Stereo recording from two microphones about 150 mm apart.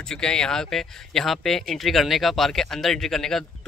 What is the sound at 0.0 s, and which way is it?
Speech, 5° left (ahead or behind).